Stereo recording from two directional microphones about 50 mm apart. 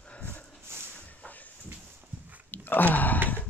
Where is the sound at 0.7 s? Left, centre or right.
Right.